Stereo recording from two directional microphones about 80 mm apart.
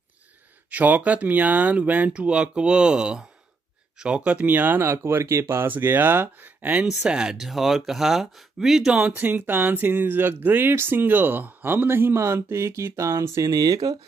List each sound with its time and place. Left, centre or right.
0.7 s speech: centre
9.1 s speech: right
13.5 s speech: right